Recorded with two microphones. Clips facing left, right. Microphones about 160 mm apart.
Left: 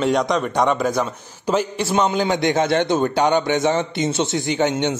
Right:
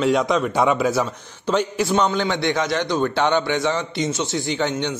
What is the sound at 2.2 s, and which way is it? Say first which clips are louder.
Speech: left 3 dB; 45° left (ahead or behind).